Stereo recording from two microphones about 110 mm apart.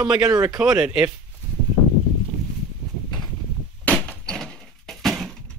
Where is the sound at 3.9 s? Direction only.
10° left (ahead or behind).